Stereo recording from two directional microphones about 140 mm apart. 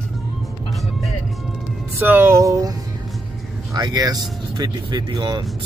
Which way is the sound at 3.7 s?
30° right (ahead or behind).